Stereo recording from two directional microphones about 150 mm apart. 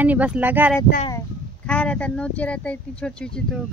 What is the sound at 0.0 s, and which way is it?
Speech, 10° right (ahead or behind).